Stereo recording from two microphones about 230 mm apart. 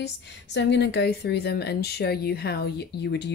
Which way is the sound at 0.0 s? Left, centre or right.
Left.